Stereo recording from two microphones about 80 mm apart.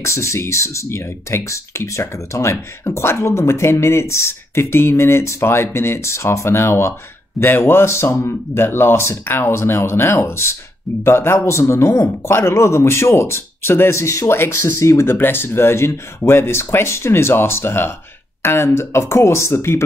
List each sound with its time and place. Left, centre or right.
0.0 s speech: left